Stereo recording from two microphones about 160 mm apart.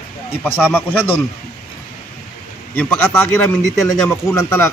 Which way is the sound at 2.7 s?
10° left (ahead or behind).